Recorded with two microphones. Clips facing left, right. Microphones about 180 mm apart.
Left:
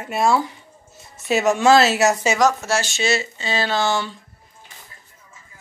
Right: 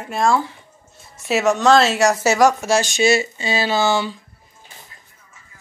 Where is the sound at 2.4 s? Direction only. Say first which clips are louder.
Right 4 dB; 15° right (ahead or behind).